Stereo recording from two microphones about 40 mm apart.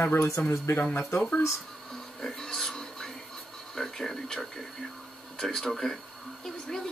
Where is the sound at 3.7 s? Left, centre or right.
Centre.